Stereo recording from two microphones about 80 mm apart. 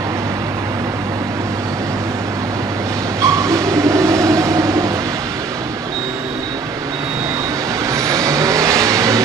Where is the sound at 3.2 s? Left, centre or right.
Right.